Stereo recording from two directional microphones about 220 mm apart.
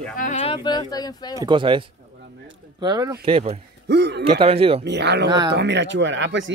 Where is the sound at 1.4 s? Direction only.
20° right (ahead or behind).